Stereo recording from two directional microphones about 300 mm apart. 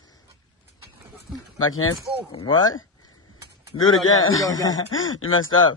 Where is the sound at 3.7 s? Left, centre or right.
Left.